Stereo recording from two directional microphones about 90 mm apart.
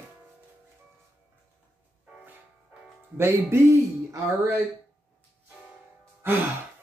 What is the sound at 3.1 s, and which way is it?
Speech, 30° right (ahead or behind).